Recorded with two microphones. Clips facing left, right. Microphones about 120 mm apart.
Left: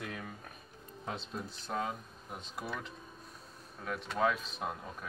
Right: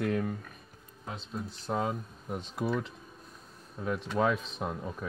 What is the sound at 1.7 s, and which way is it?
Speech, 35° right (ahead or behind).